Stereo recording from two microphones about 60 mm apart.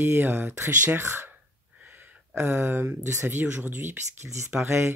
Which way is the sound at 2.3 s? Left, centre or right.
Right.